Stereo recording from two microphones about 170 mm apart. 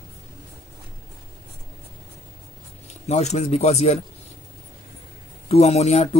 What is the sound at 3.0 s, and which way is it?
Speech, 40° left (ahead or behind).